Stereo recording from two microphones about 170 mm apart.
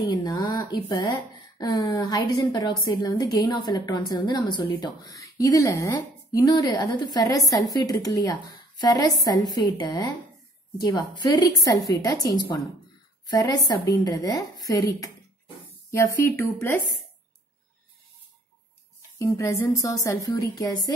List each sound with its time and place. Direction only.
0.1 s a woman's voice: 20° left (ahead or behind)
16.0 s speech: 15° left (ahead or behind)
19.1 s a woman's voice: 15° left (ahead or behind)